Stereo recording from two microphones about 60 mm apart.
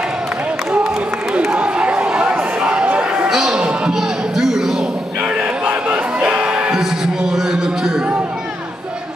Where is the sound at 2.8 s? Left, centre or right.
Centre.